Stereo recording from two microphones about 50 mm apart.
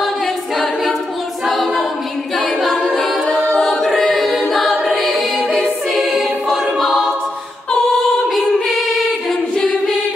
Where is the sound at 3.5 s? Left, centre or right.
Centre.